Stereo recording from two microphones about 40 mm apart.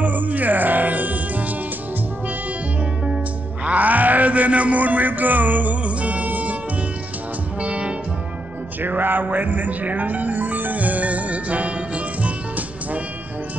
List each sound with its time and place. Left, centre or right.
0.0 s music: right
3.6 s a sound: right
7.6 s music: right
8.8 s music: right